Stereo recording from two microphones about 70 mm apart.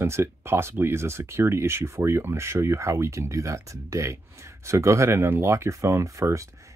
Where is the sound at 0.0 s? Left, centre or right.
Right.